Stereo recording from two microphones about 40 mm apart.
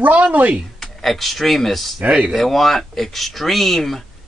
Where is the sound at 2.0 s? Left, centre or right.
Right.